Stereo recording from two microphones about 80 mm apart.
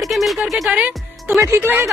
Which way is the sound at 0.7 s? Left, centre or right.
Right.